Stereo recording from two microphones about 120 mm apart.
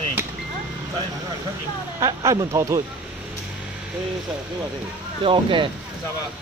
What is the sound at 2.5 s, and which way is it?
Speech, 25° right (ahead or behind).